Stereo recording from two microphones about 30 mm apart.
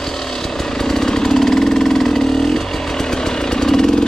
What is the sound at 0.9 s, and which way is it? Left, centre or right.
Vehicle, centre.